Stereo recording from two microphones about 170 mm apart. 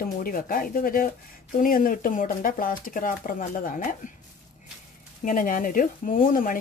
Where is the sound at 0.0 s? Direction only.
55° left (ahead or behind).